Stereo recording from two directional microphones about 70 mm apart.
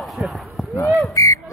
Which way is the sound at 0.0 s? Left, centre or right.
Centre.